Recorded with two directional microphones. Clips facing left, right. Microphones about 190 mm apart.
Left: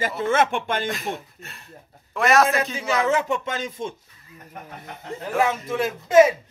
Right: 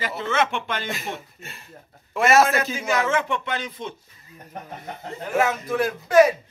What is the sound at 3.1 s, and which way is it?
Speech, 40° left (ahead or behind).